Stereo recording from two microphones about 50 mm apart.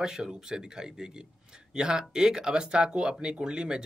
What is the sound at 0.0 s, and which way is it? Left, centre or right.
Speech, centre.